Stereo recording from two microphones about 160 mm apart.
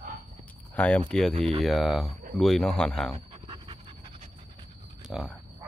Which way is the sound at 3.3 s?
30° right (ahead or behind).